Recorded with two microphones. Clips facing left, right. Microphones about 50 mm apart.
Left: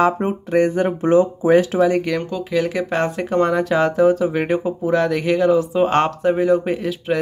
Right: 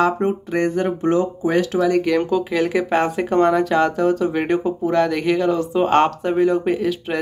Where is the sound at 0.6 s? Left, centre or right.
Left.